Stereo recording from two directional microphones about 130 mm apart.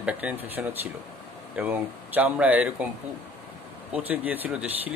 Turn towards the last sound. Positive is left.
turn(degrees=-10)  # may be behind; listen again after turning